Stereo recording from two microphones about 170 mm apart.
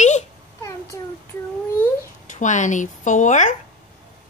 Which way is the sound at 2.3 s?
45° left (ahead or behind).